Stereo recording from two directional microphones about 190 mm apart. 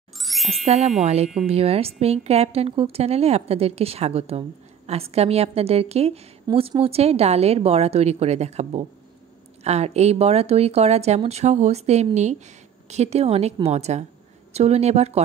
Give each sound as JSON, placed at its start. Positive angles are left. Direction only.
{"t": 0.2, "sound": "jingle", "side_deg": 0}
{"t": 0.7, "sound": "a woman's voice", "side_deg": -35}